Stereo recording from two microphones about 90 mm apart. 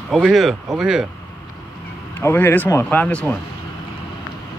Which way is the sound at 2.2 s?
25° left (ahead or behind).